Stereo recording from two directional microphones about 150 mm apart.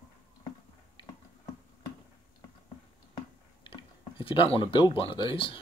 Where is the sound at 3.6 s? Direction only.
30° left (ahead or behind).